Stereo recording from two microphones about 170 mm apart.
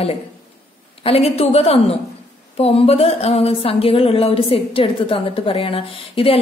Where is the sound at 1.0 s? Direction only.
35° left (ahead or behind).